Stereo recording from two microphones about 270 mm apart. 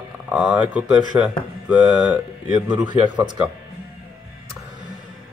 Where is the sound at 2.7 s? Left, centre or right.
Centre.